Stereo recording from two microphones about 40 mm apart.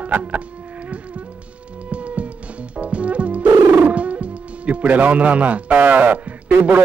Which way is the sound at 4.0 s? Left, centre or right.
Right.